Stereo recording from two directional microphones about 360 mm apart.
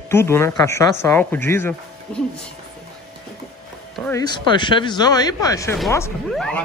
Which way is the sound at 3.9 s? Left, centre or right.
Centre.